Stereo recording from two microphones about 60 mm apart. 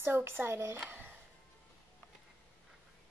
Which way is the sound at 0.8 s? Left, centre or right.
Right.